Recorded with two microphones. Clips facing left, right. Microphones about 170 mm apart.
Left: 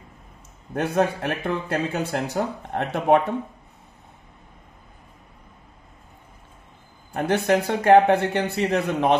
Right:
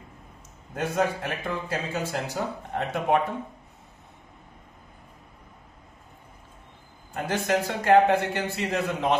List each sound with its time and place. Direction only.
0.7 s speech: 65° left (ahead or behind)
7.2 s speech: 60° left (ahead or behind)